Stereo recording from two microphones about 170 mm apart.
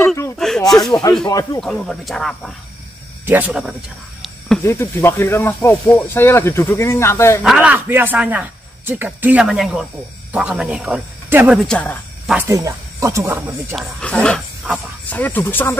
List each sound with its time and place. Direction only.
0.0 s snake: 15° left (ahead or behind)
0.4 s a sound: 5° left (ahead or behind)
1.2 s speech: 20° left (ahead or behind)
1.6 s speech: centre (ahead or behind)
3.3 s speech: 10° right (ahead or behind)
4.6 s speech: 15° left (ahead or behind)
7.4 s speech: 10° right (ahead or behind)
11.6 s speech: 5° left (ahead or behind)
12.4 s speech: 20° right (ahead or behind)
13.7 s speech: 5° left (ahead or behind)